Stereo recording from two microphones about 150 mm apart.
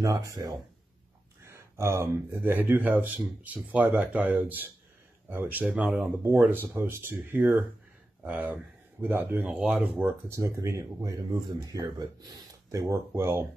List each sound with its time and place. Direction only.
0.0 s speech: 20° right (ahead or behind); by 6.1 s 5° right (ahead or behind)
6.2 s speech: 15° right (ahead or behind)
10.3 s speech: 20° right (ahead or behind)